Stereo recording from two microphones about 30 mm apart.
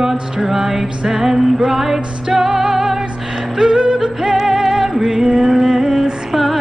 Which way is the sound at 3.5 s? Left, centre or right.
Right.